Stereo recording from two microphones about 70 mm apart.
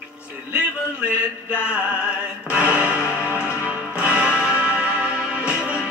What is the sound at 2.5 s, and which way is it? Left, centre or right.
Music, centre.